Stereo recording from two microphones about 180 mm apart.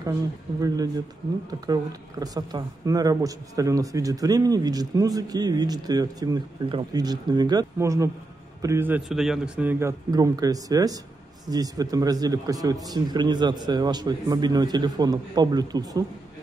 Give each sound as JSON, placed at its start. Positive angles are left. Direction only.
{"t": 1.5, "sound": "a man's voice", "side_deg": -20}